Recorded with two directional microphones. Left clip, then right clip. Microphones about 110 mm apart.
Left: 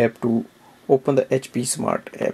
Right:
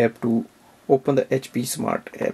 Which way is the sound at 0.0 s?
15° left (ahead or behind).